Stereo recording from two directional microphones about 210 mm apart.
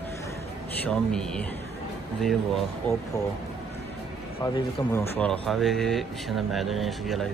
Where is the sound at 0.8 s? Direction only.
5° left (ahead or behind).